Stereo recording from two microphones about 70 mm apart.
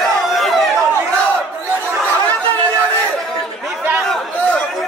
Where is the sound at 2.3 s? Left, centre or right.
Left.